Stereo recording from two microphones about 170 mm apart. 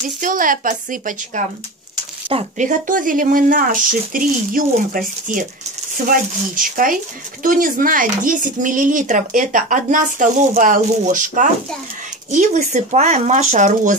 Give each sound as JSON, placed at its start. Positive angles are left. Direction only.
{"t": 0.2, "sound": "speech", "side_deg": -50}
{"t": 2.5, "sound": "speech", "side_deg": -50}
{"t": 6.0, "sound": "speech", "side_deg": -55}